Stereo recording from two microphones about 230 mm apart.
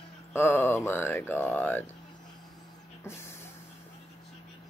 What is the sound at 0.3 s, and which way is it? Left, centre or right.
Speech, centre.